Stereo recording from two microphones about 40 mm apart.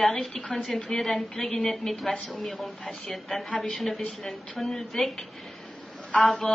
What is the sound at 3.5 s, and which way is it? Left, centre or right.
Speech, left.